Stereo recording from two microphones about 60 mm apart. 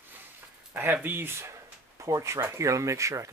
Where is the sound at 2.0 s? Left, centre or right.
Right.